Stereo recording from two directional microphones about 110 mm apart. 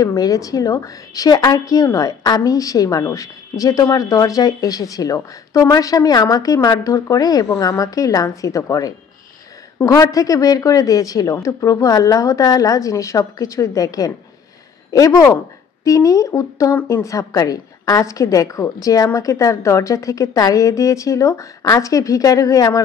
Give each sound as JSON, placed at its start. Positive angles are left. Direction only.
{"t": 0.0, "sound": "a woman's voice", "side_deg": 35}